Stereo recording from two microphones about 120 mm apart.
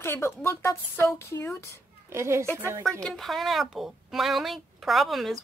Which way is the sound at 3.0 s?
5° left (ahead or behind).